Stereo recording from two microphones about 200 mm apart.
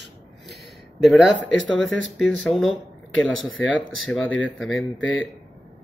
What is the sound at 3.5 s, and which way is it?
Speech, 75° left (ahead or behind).